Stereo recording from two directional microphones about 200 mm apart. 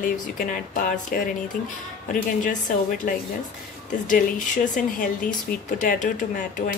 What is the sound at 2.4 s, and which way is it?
Speech, 40° left (ahead or behind).